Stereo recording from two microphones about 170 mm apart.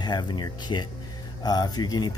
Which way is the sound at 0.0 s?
25° left (ahead or behind).